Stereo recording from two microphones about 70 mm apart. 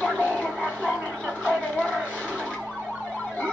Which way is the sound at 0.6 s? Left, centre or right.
Right.